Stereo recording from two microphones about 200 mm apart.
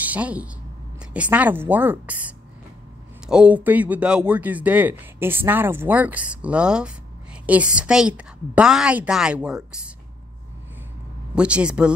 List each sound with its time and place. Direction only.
0.0 s a woman's voice: 5° right (ahead or behind)
11.3 s a woman's voice: 5° right (ahead or behind)